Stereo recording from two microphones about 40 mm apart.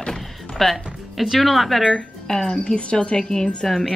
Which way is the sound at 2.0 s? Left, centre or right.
Centre.